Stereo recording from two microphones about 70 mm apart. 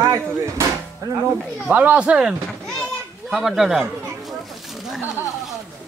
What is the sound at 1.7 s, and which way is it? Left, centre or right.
Speech, right.